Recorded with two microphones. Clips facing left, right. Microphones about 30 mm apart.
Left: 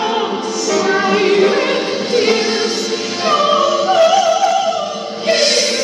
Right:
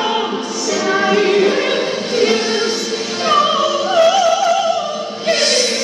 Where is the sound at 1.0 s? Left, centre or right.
Centre.